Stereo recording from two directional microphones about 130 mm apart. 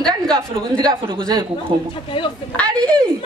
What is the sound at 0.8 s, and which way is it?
Speech, 40° right (ahead or behind).